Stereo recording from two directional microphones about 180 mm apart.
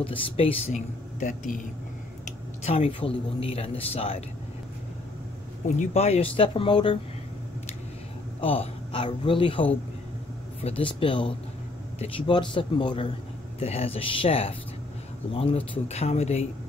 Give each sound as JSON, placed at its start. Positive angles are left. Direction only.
{"t": 0.0, "sound": "speech", "side_deg": 30}
{"t": 1.2, "sound": "speech", "side_deg": 45}
{"t": 2.6, "sound": "speech", "side_deg": 35}
{"t": 5.8, "sound": "speech", "side_deg": 35}
{"t": 8.4, "sound": "a man's voice", "side_deg": 30}
{"t": 10.8, "sound": "a man's voice", "side_deg": 30}